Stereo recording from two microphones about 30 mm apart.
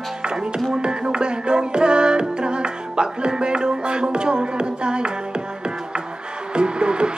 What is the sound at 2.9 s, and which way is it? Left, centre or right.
Music, right.